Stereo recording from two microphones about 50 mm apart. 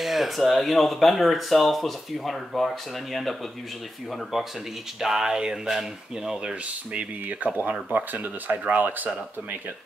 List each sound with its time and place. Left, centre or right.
0.0 s speech: centre
5.0 s speech: centre
6.9 s speech: right